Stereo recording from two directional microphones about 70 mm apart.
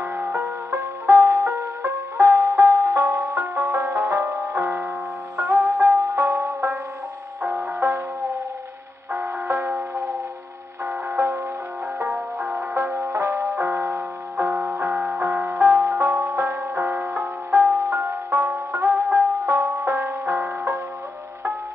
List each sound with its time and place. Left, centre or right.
0.0 s music: right
0.3 s music: right
0.7 s music: right
7.8 s music: right
9.1 s music: right
12.7 s music: right
15.6 s music: right
17.5 s music: right
17.9 s music: right
20.4 s music: right